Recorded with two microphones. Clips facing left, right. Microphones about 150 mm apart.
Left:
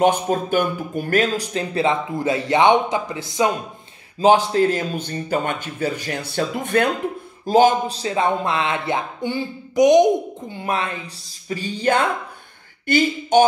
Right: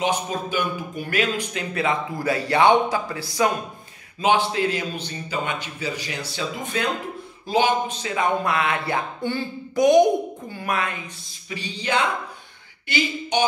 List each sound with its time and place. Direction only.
0.0 s speech: 50° left (ahead or behind); by 3.4 s 20° left (ahead or behind)
4.2 s a man's voice: 40° left (ahead or behind); by 6.9 s 55° left (ahead or behind)
7.4 s a man's voice: 45° left (ahead or behind)